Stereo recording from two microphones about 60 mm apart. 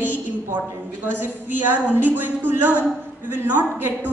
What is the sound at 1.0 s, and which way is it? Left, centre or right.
A woman's voice, right.